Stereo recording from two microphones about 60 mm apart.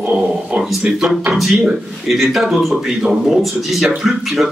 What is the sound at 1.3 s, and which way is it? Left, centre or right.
Speech, centre.